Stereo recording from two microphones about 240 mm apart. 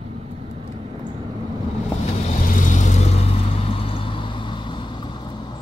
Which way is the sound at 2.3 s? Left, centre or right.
Left.